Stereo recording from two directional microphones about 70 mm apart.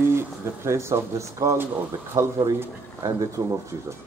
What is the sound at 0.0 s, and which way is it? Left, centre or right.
Speech, right.